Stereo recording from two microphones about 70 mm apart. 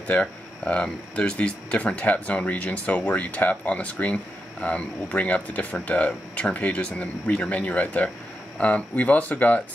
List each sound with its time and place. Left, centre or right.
0.0 s speech: centre